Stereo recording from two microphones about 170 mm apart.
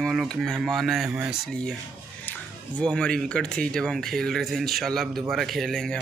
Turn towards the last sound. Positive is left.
turn(degrees=0)  # may be behind; listen again after turning